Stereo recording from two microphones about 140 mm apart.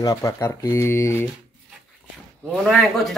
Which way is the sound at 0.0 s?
25° left (ahead or behind).